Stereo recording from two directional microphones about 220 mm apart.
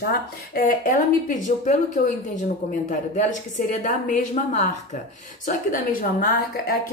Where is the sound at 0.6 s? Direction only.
40° left (ahead or behind).